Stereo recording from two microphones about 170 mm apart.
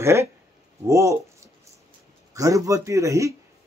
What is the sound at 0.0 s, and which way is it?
Speech, 15° right (ahead or behind).